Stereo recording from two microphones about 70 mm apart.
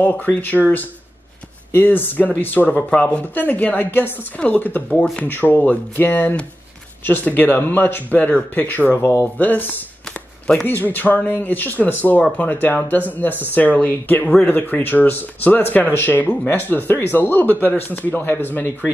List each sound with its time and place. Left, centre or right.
0.1 s speech: left
1.7 s speech: left
9.0 s speech: left
9.4 s speech: left